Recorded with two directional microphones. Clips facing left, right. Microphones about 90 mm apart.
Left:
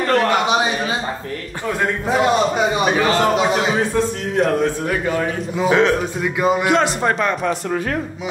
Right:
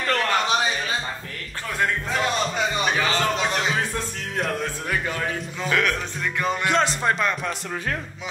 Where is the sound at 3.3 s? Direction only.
10° left (ahead or behind).